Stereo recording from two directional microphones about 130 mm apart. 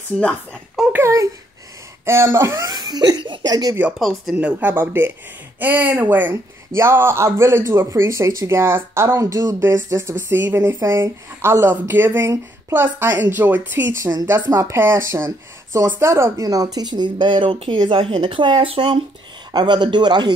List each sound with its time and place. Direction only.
0.9 s speech: 20° right (ahead or behind)
4.0 s speech: centre (ahead or behind)
4.4 s speech: 10° right (ahead or behind); by 20.3 s 35° right (ahead or behind)